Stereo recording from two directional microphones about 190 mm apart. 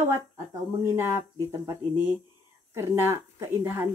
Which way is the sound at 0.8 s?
15° right (ahead or behind).